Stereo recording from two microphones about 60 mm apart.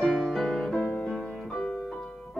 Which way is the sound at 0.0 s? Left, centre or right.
Centre.